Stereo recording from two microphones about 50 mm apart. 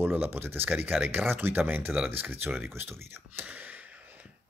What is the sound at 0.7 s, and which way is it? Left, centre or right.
Speech, right.